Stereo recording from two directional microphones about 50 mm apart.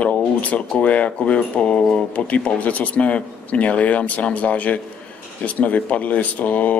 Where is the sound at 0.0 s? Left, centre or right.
Left.